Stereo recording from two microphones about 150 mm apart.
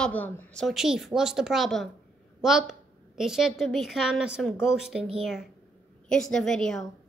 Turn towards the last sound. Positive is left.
turn(degrees=5)  # may be behind; listen again after turning